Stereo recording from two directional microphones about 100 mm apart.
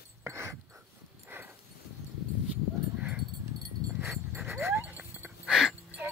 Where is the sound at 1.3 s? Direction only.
20° right (ahead or behind).